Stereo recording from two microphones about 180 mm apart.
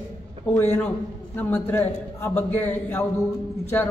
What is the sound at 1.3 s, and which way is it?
A man's voice, 10° left (ahead or behind).